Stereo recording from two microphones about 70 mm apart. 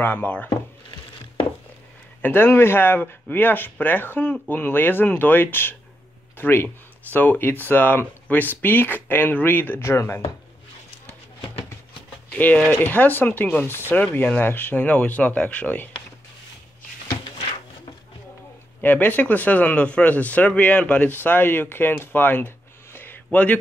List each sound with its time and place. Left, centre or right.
0.0 s speech: left
2.2 s speech: left
12.4 s speech: left
18.8 s speech: left
22.9 s a sound: left